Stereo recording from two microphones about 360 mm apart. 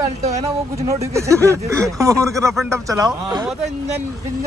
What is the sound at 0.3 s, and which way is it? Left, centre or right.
Speech, centre.